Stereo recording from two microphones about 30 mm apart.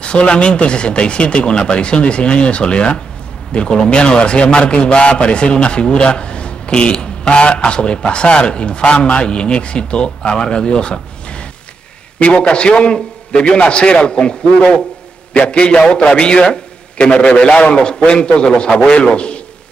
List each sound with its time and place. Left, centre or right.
0.0 s a man's voice: left